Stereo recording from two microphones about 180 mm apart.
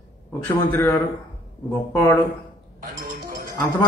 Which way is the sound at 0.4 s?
10° left (ahead or behind).